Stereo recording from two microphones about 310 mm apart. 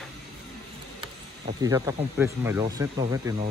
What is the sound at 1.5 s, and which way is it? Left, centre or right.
Speech, centre.